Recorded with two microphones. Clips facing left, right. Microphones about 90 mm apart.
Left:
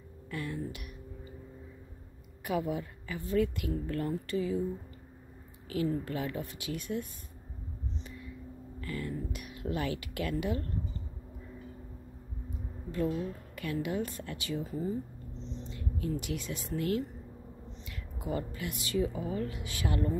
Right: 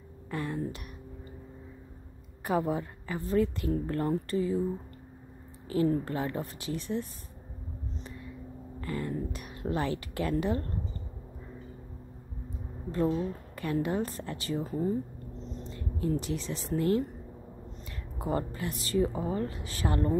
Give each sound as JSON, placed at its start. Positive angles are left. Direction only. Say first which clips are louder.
{"t": 0.3, "sound": "a sound", "louder": "right 4 dB", "side_deg": -35}
{"t": 2.4, "sound": "a woman's voice", "louder": "right 4 dB", "side_deg": -35}
{"t": 5.7, "sound": "a woman's voice", "louder": "right 5 dB", "side_deg": -35}
{"t": 8.8, "sound": "speech", "louder": "right 3 dB", "side_deg": -35}
{"t": 13.6, "sound": "speech", "louder": "right 4 dB", "side_deg": -40}
{"t": 18.2, "sound": "a woman's voice", "louder": "right 4 dB", "side_deg": -40}